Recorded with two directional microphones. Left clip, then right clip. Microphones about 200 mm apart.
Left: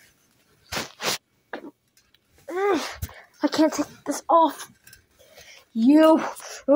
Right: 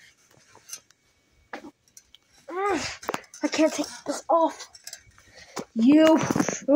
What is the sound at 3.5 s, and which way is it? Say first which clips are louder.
Speech: left 1 dB; 5° left (ahead or behind).